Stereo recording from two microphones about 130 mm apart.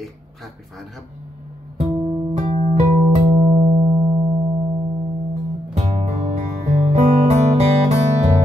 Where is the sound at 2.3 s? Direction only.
60° right (ahead or behind).